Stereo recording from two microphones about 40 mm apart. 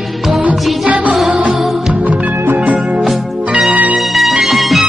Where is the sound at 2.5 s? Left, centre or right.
Right.